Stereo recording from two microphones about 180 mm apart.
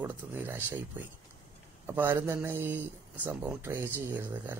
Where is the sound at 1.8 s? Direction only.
10° right (ahead or behind).